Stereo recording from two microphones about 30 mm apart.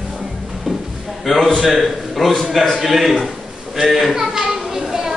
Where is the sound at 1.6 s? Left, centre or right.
Centre.